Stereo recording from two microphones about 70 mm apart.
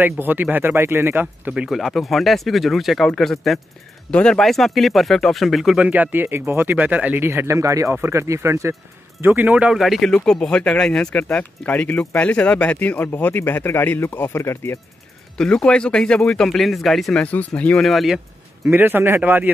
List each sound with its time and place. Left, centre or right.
0.0 s speech: right
1.7 s speech: centre
4.1 s speech: centre
4.4 s speech: centre
5.8 s speech: right
7.4 s speech: right
9.2 s speech: right
9.7 s speech: centre
10.1 s speech: centre; by 14.8 s left
15.3 s speech: centre
16.4 s speech: centre
17.2 s speech: left
17.7 s speech: centre
18.7 s speech: right